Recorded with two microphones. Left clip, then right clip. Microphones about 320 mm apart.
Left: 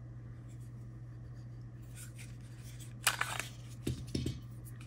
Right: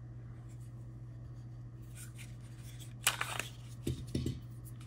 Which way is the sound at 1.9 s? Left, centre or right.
Centre.